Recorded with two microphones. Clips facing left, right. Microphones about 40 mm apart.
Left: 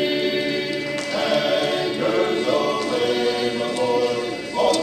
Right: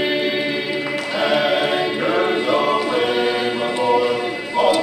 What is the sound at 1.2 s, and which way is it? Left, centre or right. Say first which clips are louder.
Choir: right 3 dB; centre.